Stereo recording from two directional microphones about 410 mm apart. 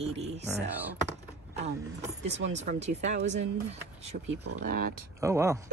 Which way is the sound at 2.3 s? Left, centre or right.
Right.